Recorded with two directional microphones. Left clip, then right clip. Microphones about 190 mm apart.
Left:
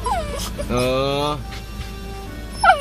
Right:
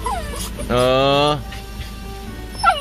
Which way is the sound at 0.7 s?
25° right (ahead or behind).